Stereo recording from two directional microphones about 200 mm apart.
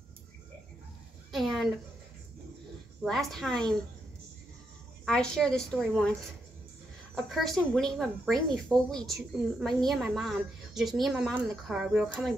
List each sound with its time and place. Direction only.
1.3 s a sound: centre (ahead or behind)
3.0 s speech: centre (ahead or behind)
5.0 s speech: 5° left (ahead or behind)
7.2 s speech: centre (ahead or behind)